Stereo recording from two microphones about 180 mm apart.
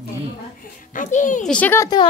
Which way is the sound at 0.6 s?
45° left (ahead or behind).